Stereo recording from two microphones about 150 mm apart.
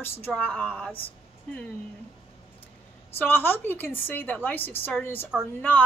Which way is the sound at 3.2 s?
15° left (ahead or behind).